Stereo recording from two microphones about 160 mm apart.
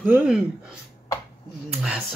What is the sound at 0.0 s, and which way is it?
Speech, 10° right (ahead or behind).